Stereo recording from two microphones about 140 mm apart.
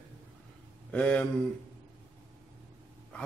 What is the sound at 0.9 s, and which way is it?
Speech, 10° left (ahead or behind).